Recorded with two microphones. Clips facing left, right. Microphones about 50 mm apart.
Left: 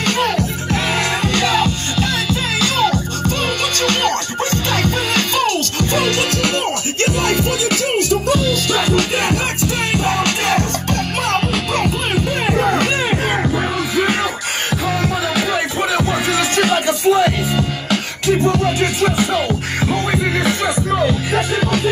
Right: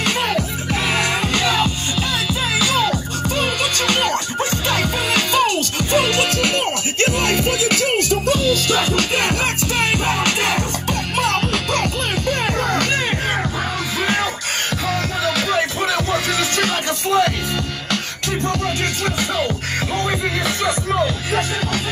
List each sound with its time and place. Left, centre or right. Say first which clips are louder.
0.0 s music: left 2 dB; centre; by 7.8 s right
8.9 s music: left 2 dB; right
10.0 s music: left 2 dB; centre
10.9 s music: right 1 dB; centre
14.9 s music: left 1 dB; centre